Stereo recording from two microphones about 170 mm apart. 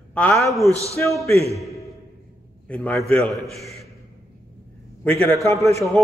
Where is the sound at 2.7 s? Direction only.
5° left (ahead or behind).